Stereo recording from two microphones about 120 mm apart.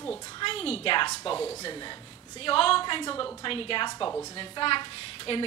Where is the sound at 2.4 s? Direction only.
50° left (ahead or behind).